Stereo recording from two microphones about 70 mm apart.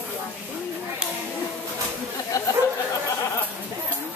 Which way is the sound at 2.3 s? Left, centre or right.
Left.